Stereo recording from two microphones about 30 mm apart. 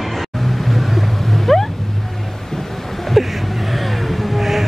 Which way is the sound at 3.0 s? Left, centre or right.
Centre.